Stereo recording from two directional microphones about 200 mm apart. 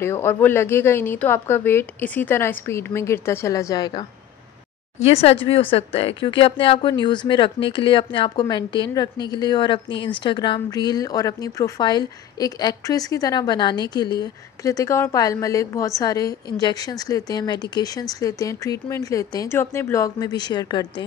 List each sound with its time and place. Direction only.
0.0 s a woman's voice: 10° left (ahead or behind)
4.9 s speech: 30° left (ahead or behind)